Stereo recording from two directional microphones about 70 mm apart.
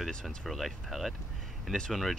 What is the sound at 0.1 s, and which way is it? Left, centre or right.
Speech, centre.